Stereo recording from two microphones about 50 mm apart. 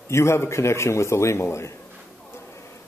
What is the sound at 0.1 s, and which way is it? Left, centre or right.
A man's voice, left.